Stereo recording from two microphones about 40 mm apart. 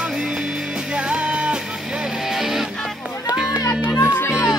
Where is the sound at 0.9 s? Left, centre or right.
Right.